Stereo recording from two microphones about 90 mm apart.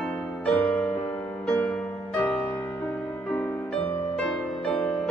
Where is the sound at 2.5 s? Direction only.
25° left (ahead or behind).